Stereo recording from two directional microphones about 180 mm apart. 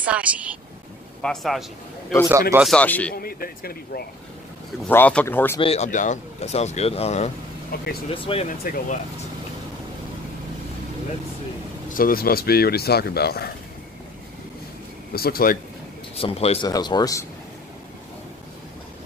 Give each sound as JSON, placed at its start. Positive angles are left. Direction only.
{"t": 0.0, "sound": "a man's voice", "side_deg": -5}
{"t": 3.2, "sound": "speech", "side_deg": 55}
{"t": 4.8, "sound": "speech", "side_deg": 10}
{"t": 5.6, "sound": "speech", "side_deg": 35}
{"t": 7.7, "sound": "speech", "side_deg": 60}
{"t": 8.1, "sound": "speech", "side_deg": 30}
{"t": 8.5, "sound": "speech", "side_deg": 50}
{"t": 11.9, "sound": "speech", "side_deg": 55}
{"t": 15.1, "sound": "speech", "side_deg": 55}
{"t": 16.2, "sound": "speech", "side_deg": 35}
{"t": 16.6, "sound": "speech", "side_deg": 20}